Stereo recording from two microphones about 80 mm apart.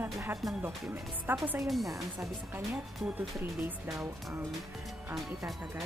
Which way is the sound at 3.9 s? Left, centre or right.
Centre.